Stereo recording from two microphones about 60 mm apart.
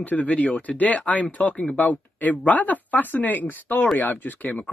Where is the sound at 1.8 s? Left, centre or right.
Left.